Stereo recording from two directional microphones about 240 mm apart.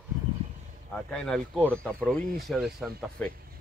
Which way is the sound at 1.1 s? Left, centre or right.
Centre.